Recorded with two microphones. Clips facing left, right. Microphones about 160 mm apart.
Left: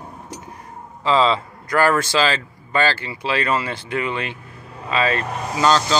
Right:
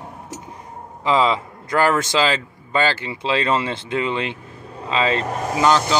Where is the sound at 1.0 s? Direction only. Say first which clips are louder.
Left 1 dB; 15° right (ahead or behind).